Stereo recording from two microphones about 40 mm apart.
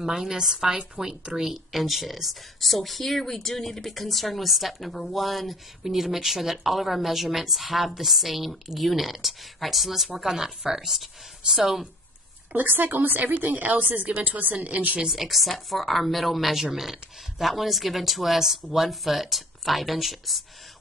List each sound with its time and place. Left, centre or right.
0.0 s a woman's voice: centre
12.5 s a woman's voice: right
15.0 s a woman's voice: centre